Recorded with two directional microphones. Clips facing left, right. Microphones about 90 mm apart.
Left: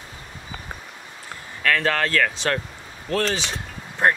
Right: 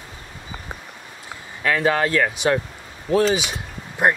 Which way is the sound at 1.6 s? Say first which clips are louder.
Right 2 dB; 15° right (ahead or behind).